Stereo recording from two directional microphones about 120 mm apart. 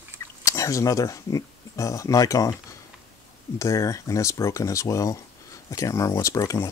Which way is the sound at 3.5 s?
25° left (ahead or behind).